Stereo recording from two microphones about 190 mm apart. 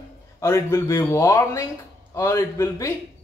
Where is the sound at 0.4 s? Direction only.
15° left (ahead or behind).